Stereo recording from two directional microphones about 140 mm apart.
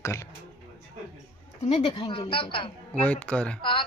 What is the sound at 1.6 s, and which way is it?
A woman's voice, 50° left (ahead or behind).